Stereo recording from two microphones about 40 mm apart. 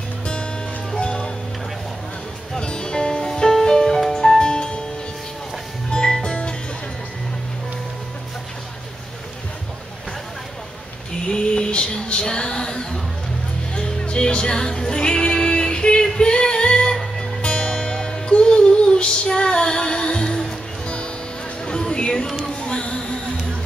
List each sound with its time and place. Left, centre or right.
0.9 s music: centre
2.6 s music: left
5.9 s music: centre
11.2 s a sound: left
13.7 s music: left
21.6 s a sound: centre
22.4 s music: left